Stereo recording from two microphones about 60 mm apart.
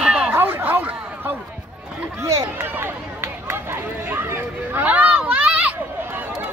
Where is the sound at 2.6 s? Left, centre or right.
Right.